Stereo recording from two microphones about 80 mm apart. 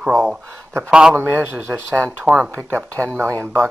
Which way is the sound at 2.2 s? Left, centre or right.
Centre.